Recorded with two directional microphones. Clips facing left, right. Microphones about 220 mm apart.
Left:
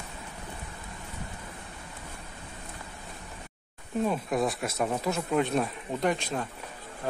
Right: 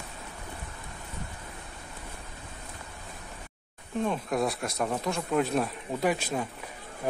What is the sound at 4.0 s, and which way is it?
A man's voice, 5° left (ahead or behind).